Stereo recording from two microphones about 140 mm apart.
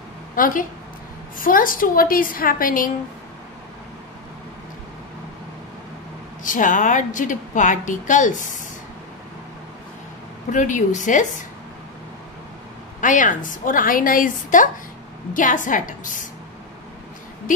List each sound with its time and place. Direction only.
0.4 s a woman's voice: 75° left (ahead or behind)
6.4 s a woman's voice: 65° left (ahead or behind)
10.5 s a woman's voice: 60° left (ahead or behind)
13.0 s a woman's voice: 65° left (ahead or behind)